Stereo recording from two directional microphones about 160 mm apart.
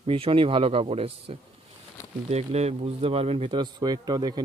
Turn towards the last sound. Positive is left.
turn(degrees=-25)  # may be behind; listen again after turning